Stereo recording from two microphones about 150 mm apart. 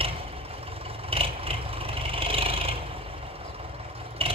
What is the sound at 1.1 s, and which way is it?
Vehicle, 40° right (ahead or behind).